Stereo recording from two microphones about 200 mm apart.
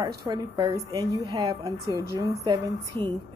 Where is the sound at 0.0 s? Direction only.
20° right (ahead or behind).